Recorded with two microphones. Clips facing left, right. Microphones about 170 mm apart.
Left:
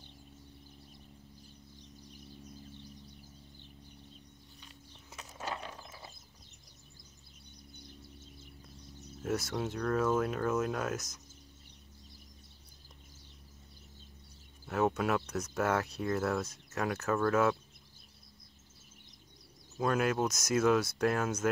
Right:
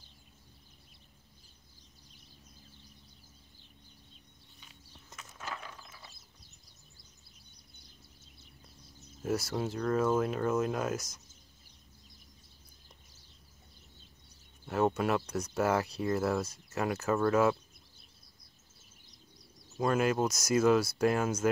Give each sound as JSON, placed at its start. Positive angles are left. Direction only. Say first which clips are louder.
{"t": 5.1, "sound": "a sound", "louder": "left 3 dB", "side_deg": 30}
{"t": 5.9, "sound": "ratchet", "louder": "left 4 dB", "side_deg": 45}
{"t": 9.2, "sound": "speech", "louder": "right 2 dB", "side_deg": 0}
{"t": 14.7, "sound": "speech", "louder": "right 1 dB", "side_deg": 0}
{"t": 19.8, "sound": "speech", "louder": "right 2 dB", "side_deg": 0}